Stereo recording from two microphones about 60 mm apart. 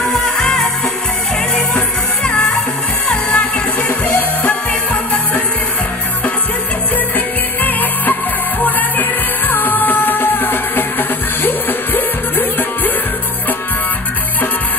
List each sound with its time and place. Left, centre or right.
0.0 s music: left
2.2 s music: left
7.6 s music: left